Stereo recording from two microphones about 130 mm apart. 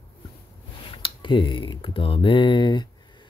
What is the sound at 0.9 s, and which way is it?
Speech, 40° left (ahead or behind).